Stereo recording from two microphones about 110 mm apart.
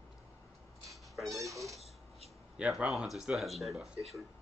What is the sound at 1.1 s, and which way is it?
Speech, centre (ahead or behind).